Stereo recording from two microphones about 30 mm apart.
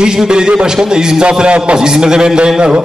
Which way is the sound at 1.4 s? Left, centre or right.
Right.